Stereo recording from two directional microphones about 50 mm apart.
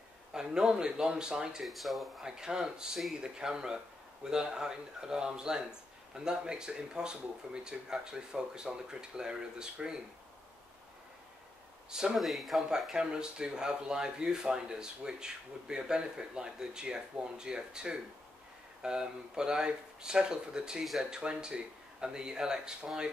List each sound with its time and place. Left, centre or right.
0.3 s speech: centre
1.6 s speech: centre
2.2 s speech: centre
11.9 s speech: centre
12.2 s speech: centre
12.9 s speech: centre